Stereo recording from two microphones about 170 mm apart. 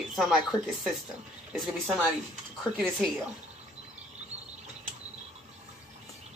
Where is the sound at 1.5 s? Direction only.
Centre (ahead or behind).